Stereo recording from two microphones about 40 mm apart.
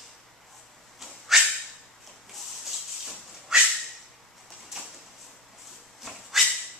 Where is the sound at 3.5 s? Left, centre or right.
Centre.